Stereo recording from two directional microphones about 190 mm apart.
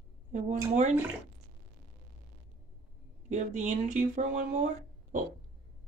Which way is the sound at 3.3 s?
40° right (ahead or behind).